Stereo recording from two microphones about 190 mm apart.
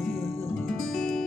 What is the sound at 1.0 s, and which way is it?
Music, centre (ahead or behind).